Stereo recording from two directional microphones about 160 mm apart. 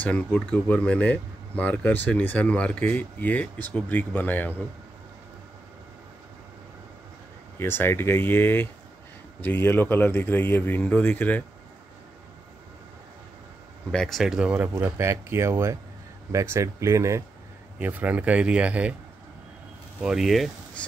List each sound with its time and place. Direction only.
0.0 s speech: 10° left (ahead or behind)
7.5 s speech: 15° left (ahead or behind)
13.9 s speech: centre (ahead or behind)
20.0 s speech: 5° right (ahead or behind)